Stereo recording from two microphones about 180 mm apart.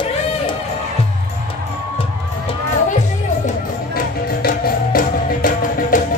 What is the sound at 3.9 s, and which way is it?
Music, 55° left (ahead or behind).